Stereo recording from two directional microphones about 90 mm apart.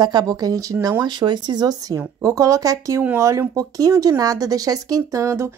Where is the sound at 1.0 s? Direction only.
55° right (ahead or behind); by 5.5 s 35° right (ahead or behind).